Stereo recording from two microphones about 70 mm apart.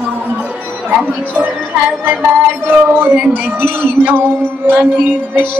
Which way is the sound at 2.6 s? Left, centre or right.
Right.